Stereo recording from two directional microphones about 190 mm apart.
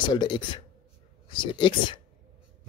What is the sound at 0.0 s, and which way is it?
Speech, 25° left (ahead or behind).